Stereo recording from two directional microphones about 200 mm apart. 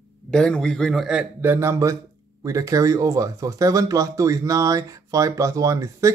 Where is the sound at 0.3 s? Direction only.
5° left (ahead or behind).